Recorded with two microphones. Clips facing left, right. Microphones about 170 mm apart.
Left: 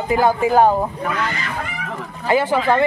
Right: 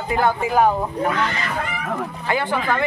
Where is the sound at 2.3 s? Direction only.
25° left (ahead or behind).